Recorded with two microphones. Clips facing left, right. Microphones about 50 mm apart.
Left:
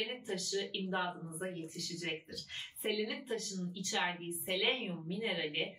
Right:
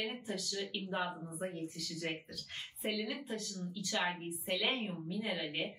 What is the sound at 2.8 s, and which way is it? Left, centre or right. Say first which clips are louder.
Speech: left 2 dB; left.